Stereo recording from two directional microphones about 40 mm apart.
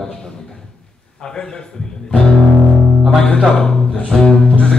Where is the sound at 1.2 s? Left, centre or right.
Centre.